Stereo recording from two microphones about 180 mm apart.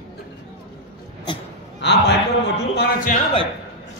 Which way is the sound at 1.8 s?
75° left (ahead or behind).